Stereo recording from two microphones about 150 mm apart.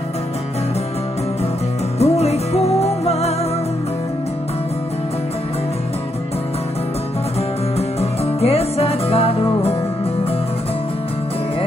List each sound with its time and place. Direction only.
2.0 s music: 45° left (ahead or behind)
8.0 s music: 40° left (ahead or behind)